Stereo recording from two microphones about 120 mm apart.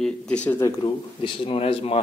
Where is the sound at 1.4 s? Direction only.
55° left (ahead or behind).